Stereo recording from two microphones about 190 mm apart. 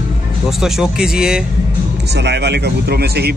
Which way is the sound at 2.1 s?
65° right (ahead or behind).